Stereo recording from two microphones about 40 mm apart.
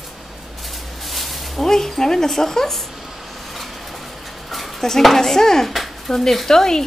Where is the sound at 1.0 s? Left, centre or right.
Centre.